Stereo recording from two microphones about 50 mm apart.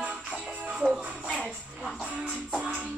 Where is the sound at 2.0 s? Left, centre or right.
Centre.